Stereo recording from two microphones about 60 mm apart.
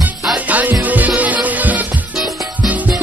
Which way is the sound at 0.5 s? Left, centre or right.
Right.